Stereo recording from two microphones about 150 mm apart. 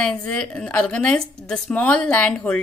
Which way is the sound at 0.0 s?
5° left (ahead or behind).